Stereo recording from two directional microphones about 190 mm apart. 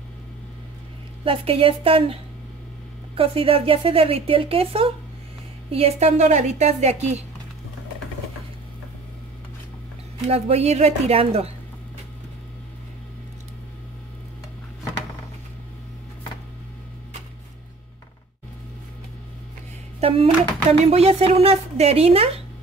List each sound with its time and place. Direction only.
1.2 s a woman's voice: 30° right (ahead or behind)
3.2 s a woman's voice: 30° right (ahead or behind)
10.2 s a woman's voice: 35° right (ahead or behind)
20.0 s a woman's voice: 30° right (ahead or behind)